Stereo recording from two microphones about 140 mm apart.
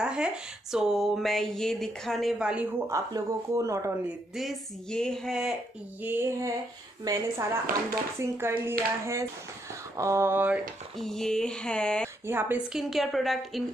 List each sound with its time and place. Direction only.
0.0 s speech: 5° right (ahead or behind)
2.9 s speech: 20° right (ahead or behind)
4.4 s speech: centre (ahead or behind)
6.0 s a sound: 15° right (ahead or behind)
7.1 s speech: 20° right (ahead or behind)
9.9 s a sound: 20° right (ahead or behind)
11.0 s speech: 5° left (ahead or behind)
12.3 s a sound: 15° right (ahead or behind)
12.7 s speech: centre (ahead or behind)